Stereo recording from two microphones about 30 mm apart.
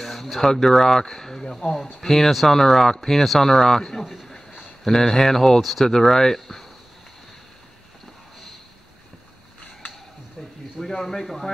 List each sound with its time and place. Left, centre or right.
0.0 s a sound: centre
0.5 s speech: centre
4.8 s speech: centre
5.9 s speech: centre
6.3 s speech: centre
10.9 s speech: centre